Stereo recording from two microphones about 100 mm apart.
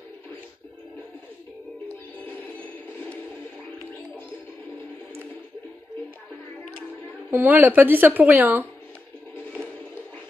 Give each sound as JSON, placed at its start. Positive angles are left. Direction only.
{"t": 2.2, "sound": "music", "side_deg": 20}
{"t": 7.2, "sound": "a woman's voice", "side_deg": -20}